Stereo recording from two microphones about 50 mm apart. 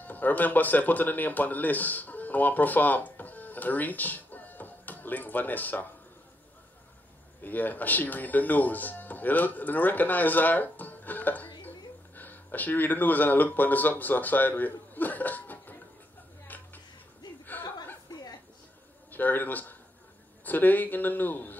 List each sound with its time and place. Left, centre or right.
0.0 s speech: left
7.4 s speech: left
16.4 s a sound: left
17.5 s chuckle: left
19.1 s speech: left